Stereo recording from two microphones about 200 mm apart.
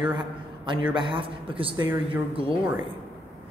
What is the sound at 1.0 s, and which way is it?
Speech, 25° right (ahead or behind).